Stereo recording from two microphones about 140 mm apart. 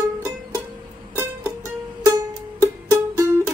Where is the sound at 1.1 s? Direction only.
20° right (ahead or behind).